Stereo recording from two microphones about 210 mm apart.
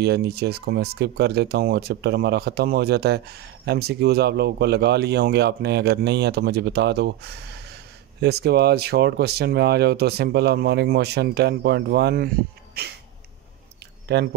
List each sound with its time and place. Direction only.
0.0 s speech: 50° right (ahead or behind)
8.2 s speech: 50° right (ahead or behind)
14.0 s speech: 50° right (ahead or behind)